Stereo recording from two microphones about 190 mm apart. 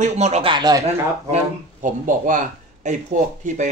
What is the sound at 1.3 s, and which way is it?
A man's voice, 40° right (ahead or behind).